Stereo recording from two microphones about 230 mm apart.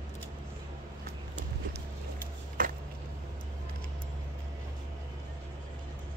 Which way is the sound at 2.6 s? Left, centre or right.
Right.